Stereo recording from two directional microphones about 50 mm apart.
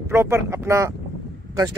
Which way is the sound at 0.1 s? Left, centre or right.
Right.